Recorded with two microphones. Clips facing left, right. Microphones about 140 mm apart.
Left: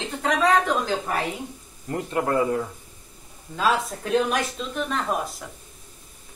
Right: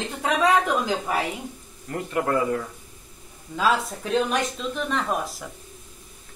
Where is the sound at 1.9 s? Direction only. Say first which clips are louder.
Left 1 dB; 25° left (ahead or behind).